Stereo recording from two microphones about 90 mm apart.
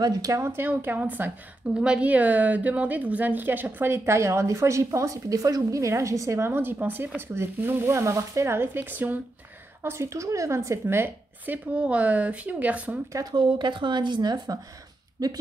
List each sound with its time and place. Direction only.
0.0 s speech: 40° right (ahead or behind)
0.4 s a woman's voice: 25° right (ahead or behind)
9.8 s a woman's voice: 30° right (ahead or behind); by 13.0 s 15° right (ahead or behind)
13.1 s speech: 50° right (ahead or behind)